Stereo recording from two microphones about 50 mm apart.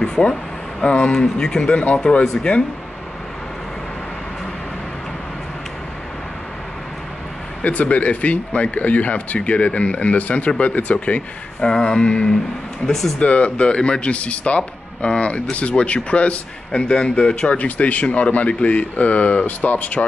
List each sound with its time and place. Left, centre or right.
0.0 s speech: centre
1.1 s speech: centre
7.6 s speech: left
12.8 s speech: centre
13.2 s speech: left
17.6 s speech: left